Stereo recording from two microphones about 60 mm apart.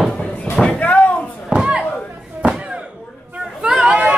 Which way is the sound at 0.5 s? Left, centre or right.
Left.